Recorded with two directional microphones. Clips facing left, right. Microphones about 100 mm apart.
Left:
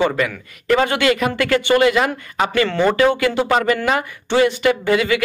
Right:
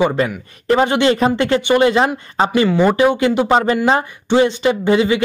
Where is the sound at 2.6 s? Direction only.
15° right (ahead or behind).